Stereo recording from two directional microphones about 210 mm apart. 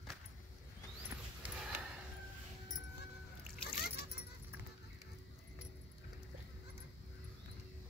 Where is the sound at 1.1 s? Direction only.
5° right (ahead or behind).